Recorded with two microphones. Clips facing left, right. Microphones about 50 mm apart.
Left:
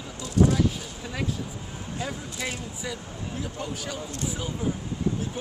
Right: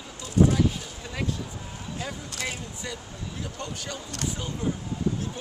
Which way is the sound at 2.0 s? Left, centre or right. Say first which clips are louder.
Left 2 dB; centre.